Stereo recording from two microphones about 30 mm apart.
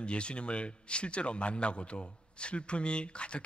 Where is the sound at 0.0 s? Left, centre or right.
Left.